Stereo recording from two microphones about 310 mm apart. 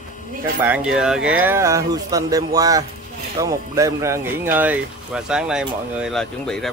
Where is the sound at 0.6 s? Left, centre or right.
Centre.